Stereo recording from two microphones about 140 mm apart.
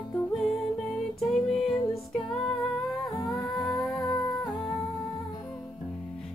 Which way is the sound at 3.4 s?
Centre (ahead or behind).